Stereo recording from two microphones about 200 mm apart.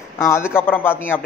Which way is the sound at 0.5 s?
10° left (ahead or behind).